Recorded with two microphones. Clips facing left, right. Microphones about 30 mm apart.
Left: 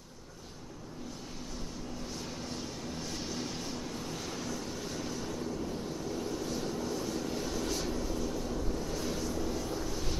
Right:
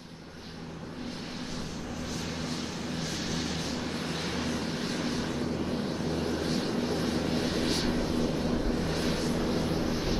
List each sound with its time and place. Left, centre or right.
3.0 s vehicle: right
9.8 s vehicle: right